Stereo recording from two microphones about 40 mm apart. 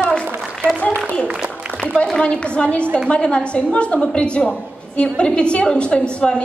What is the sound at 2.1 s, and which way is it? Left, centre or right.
A woman's voice, left.